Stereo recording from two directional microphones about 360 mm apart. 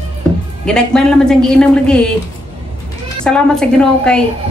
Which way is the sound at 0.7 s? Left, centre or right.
Centre.